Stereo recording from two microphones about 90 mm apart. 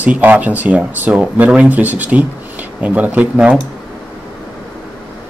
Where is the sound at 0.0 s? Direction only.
15° right (ahead or behind).